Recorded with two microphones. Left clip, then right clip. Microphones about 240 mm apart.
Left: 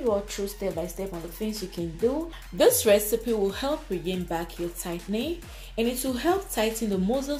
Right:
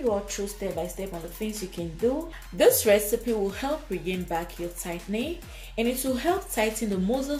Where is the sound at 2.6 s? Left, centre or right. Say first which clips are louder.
Even; left.